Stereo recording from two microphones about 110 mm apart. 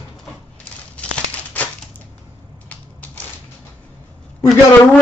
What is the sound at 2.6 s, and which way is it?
Typewriter, 15° left (ahead or behind).